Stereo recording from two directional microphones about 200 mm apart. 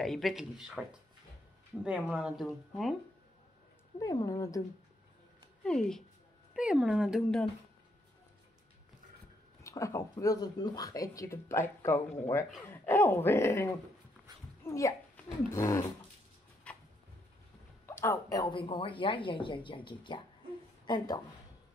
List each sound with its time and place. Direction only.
0.0 s speech: centre (ahead or behind)
4.0 s speech: 15° left (ahead or behind)
5.6 s speech: 5° left (ahead or behind)
9.6 s speech: 15° left (ahead or behind)
14.6 s a sound: 15° left (ahead or behind)
15.5 s speech: 15° left (ahead or behind)
16.7 s a sound: 5° left (ahead or behind)
17.8 s a woman's voice: 10° left (ahead or behind)